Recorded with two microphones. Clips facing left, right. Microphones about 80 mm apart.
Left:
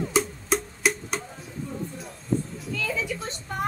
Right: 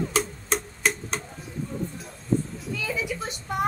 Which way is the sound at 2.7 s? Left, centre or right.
Centre.